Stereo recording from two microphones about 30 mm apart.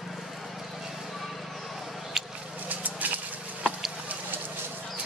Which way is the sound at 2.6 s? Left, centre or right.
Right.